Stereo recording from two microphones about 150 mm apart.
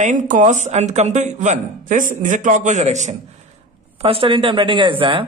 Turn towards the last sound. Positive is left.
turn(degrees=-35)  # may be behind; listen again after turning